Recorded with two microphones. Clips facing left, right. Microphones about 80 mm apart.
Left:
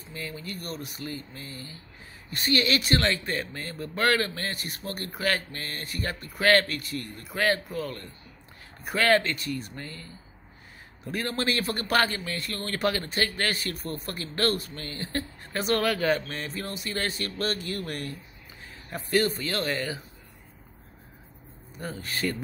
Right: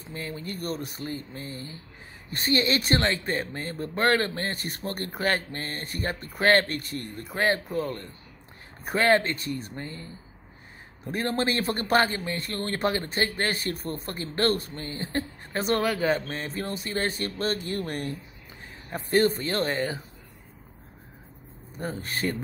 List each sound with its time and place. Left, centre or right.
0.1 s speech: right
16.5 s speech: right
21.7 s speech: right